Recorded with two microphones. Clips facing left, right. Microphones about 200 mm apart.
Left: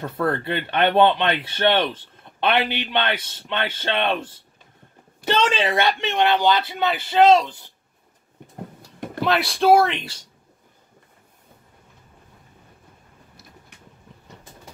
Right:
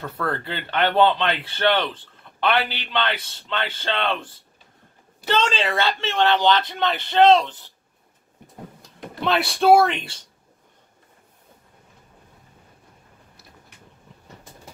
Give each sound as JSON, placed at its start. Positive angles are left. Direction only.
{"t": 0.0, "sound": "speech", "side_deg": 20}
{"t": 5.5, "sound": "speech", "side_deg": 20}
{"t": 9.2, "sound": "speech", "side_deg": 0}